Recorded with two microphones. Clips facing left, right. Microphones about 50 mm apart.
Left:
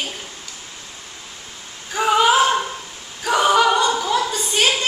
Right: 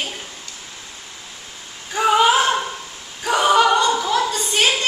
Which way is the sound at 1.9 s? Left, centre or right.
Centre.